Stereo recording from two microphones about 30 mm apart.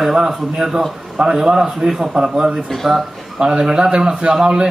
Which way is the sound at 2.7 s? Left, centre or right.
Centre.